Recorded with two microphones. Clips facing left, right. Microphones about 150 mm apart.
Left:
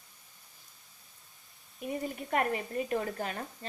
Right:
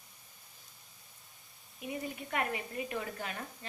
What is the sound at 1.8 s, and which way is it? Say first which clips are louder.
A woman's voice: left 4 dB; 45° left (ahead or behind).